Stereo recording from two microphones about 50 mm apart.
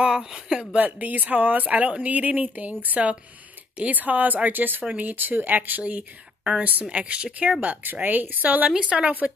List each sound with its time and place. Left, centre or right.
0.0 s speech: centre
0.7 s a woman's voice: right
7.6 s speech: right
8.7 s a woman's voice: right